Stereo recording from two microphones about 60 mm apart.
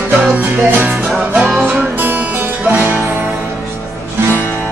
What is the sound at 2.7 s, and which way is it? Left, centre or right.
Music, right.